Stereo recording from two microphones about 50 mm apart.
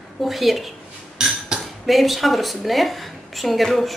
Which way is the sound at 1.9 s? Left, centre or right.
Centre.